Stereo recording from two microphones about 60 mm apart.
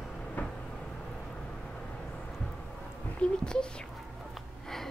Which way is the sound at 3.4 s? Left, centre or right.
Centre.